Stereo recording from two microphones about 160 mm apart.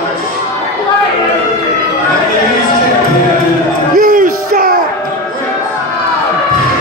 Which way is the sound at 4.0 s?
60° right (ahead or behind).